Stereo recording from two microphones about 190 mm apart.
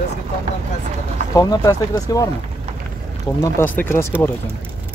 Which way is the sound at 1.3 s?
20° left (ahead or behind).